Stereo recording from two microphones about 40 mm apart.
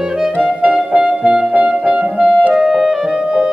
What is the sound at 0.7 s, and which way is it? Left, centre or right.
Music, right.